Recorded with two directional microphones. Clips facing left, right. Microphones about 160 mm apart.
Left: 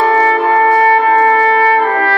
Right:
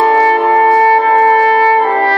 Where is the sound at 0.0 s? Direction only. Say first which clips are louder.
Right 2 dB; 30° right (ahead or behind).